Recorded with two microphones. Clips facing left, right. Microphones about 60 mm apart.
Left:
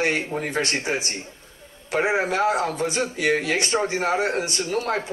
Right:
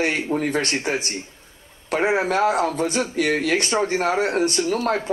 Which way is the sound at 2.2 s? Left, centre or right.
Right.